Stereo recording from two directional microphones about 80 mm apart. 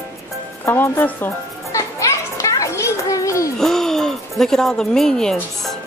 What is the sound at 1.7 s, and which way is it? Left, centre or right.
Children playing, left.